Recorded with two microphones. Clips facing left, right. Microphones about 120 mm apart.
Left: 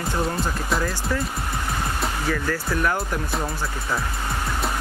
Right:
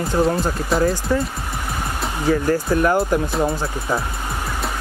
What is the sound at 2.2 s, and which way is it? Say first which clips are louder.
Speech: right 10 dB; 20° right (ahead or behind).